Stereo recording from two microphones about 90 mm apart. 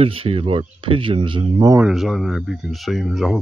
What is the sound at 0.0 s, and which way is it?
Speech, 90° right.